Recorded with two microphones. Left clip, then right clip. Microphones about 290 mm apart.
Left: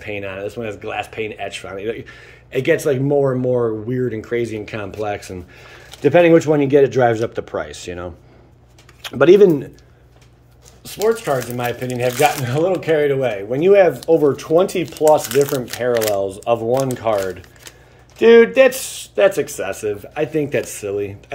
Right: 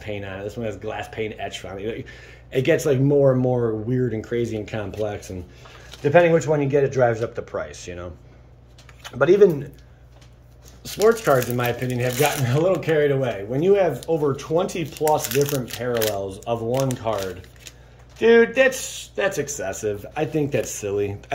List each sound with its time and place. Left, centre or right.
0.0 s speech: centre
5.9 s speech: left
9.0 s speech: left
10.8 s speech: centre
18.2 s speech: centre